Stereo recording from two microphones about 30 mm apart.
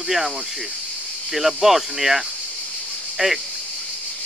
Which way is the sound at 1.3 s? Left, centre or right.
Centre.